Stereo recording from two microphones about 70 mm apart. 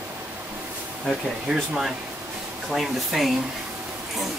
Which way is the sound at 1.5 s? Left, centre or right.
Centre.